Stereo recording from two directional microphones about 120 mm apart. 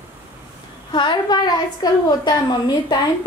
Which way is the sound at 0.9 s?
40° left (ahead or behind).